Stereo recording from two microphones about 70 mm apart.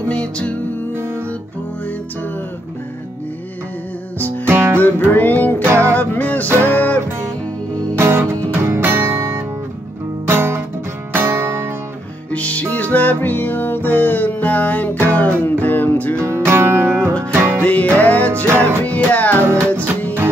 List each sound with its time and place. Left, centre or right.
0.1 s music: centre
4.5 s music: right
4.7 s music: left
5.6 s music: right
5.9 s music: left
8.0 s music: right
9.1 s music: right
10.2 s music: right
12.3 s music: centre
16.2 s music: right
17.6 s music: left